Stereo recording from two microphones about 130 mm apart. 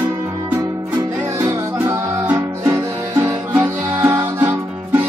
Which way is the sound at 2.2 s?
15° right (ahead or behind).